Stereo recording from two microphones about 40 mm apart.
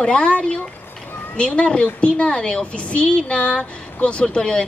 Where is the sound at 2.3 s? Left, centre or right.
Centre.